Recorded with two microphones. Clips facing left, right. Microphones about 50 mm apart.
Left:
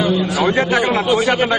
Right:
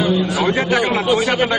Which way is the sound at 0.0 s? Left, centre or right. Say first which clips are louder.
Left 1 dB; centre.